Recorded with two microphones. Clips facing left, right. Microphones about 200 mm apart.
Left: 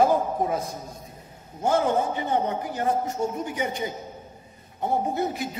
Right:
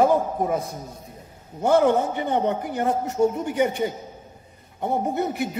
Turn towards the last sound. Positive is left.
turn(degrees=-60)  # may be behind; listen again after turning